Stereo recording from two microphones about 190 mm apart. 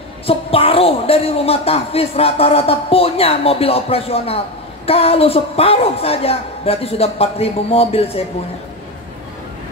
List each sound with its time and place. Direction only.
0.3 s speech: 30° left (ahead or behind)